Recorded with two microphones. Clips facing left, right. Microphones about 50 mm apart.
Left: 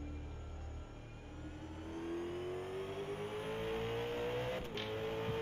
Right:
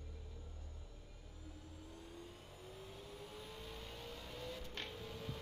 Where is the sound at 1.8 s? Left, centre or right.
Left.